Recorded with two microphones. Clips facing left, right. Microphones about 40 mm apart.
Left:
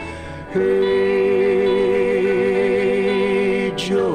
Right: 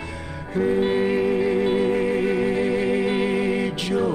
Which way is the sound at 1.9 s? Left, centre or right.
Left.